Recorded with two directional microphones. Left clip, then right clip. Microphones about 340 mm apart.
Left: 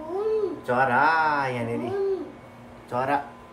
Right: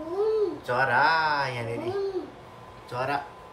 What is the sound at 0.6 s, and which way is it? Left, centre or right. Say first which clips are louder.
Speech: left 2 dB; centre.